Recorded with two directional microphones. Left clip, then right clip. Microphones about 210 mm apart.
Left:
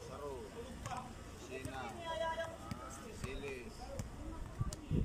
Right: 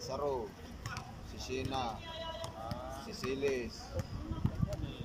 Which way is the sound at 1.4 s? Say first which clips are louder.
Right 9 dB; 20° right (ahead or behind).